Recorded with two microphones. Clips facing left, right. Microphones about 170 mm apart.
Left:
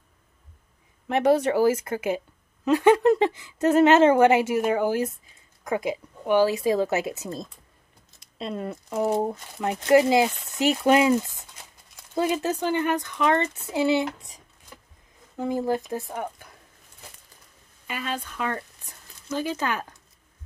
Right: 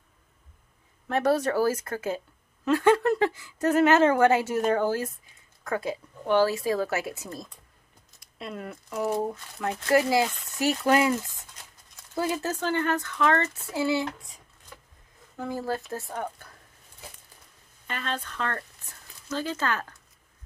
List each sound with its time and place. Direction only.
1.0 s a woman's voice: 20° left (ahead or behind)
17.8 s speech: 10° left (ahead or behind)